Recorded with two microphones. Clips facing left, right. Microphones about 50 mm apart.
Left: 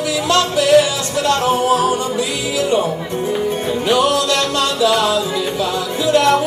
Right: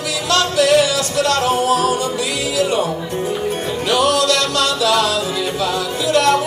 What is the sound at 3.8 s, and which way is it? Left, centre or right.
Music, left.